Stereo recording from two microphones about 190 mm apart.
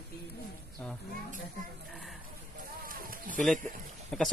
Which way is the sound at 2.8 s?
50° right (ahead or behind).